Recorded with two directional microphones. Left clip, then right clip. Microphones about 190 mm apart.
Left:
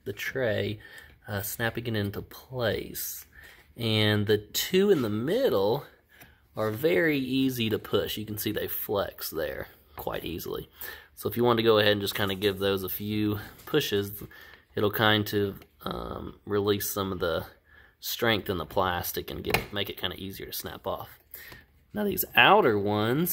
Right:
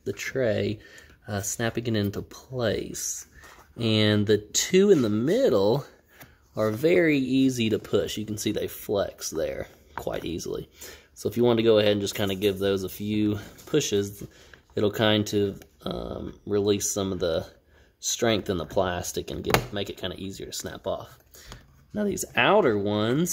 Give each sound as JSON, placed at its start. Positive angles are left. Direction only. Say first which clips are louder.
{"t": 0.0, "sound": "speech", "louder": "right 3 dB", "side_deg": -25}